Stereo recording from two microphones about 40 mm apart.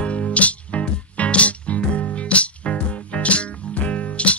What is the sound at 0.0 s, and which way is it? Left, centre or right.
Music, left.